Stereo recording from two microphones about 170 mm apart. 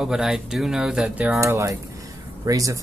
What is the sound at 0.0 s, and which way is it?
Speech, centre (ahead or behind).